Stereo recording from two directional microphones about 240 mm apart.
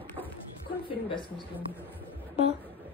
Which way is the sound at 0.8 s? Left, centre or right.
Left.